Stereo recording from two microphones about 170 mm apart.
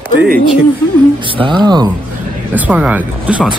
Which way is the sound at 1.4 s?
25° right (ahead or behind).